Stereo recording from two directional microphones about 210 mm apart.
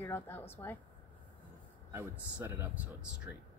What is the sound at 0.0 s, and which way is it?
Speech, 10° left (ahead or behind).